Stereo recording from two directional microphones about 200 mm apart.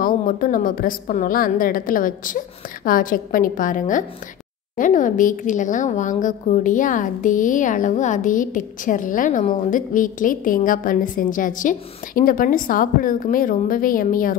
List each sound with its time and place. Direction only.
0.0 s a woman's voice: 45° left (ahead or behind)